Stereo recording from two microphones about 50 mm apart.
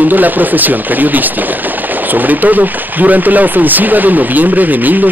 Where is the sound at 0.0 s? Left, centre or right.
Right.